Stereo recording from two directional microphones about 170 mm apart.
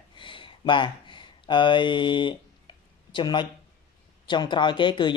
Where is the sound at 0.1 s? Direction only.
30° left (ahead or behind).